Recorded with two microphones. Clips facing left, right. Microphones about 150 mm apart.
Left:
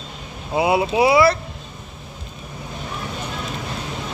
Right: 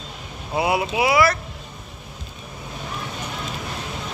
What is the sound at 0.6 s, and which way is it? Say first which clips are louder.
Speech: left 4 dB; 25° left (ahead or behind).